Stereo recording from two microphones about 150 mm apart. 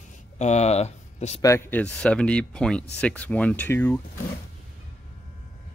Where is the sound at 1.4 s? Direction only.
15° left (ahead or behind).